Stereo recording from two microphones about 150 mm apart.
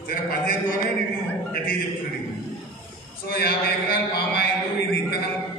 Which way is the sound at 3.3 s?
90° left.